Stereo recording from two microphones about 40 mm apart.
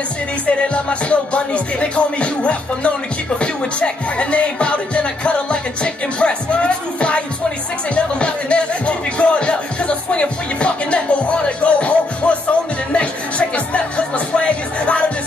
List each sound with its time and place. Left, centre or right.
0.5 s music: left
3.3 s speech: left
11.4 s music: left